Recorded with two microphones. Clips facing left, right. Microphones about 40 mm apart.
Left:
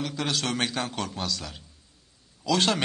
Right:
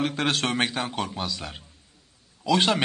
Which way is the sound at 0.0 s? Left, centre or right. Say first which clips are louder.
Right 4 dB; right.